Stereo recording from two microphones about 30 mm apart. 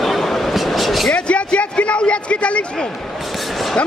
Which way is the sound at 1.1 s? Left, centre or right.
Left.